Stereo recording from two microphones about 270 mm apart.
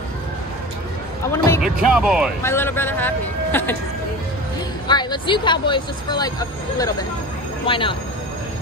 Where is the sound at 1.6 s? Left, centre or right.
Centre.